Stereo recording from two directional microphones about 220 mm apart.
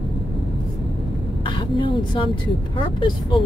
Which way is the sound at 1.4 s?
20° left (ahead or behind).